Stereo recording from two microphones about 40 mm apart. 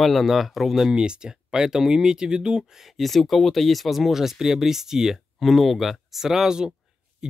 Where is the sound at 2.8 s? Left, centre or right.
Centre.